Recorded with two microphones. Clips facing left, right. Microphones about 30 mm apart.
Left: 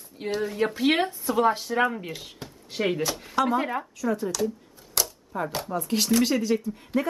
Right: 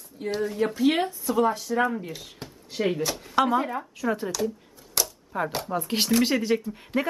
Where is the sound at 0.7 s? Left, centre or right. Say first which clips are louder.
Right 1 dB; left.